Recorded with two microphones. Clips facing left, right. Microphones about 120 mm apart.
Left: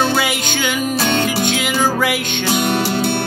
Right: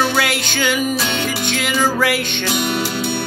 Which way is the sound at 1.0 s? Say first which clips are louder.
Left 4 dB; 45° left (ahead or behind).